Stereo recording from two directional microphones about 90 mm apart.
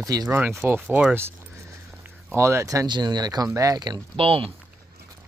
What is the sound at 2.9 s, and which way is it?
Speech, 55° right (ahead or behind).